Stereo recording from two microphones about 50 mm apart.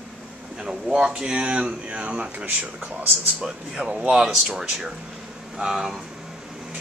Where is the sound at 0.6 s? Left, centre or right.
Centre.